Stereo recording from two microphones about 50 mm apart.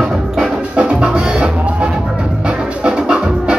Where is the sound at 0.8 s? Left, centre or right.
Centre.